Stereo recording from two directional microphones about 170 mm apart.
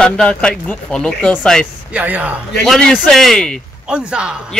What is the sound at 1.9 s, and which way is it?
Speech, 10° right (ahead or behind).